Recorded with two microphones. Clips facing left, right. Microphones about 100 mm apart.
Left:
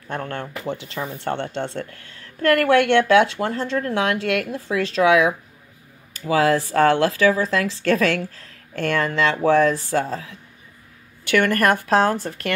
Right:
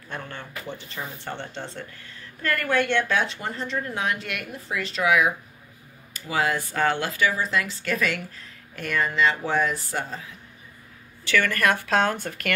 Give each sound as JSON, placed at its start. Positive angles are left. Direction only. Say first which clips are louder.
{"t": 0.1, "sound": "speech", "louder": "left 7 dB", "side_deg": 60}
{"t": 6.3, "sound": "speech", "louder": "left 7 dB", "side_deg": 90}
{"t": 11.2, "sound": "speech", "louder": "left 5 dB", "side_deg": 50}